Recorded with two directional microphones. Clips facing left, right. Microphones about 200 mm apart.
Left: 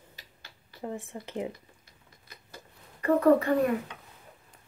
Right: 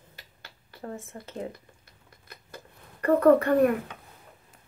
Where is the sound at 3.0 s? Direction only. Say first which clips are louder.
Right 2 dB; 60° right (ahead or behind).